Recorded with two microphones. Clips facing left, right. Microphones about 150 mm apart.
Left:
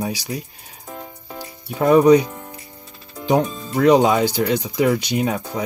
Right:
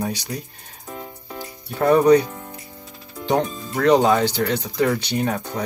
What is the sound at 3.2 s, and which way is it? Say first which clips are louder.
Speech: left 2 dB; 10° left (ahead or behind).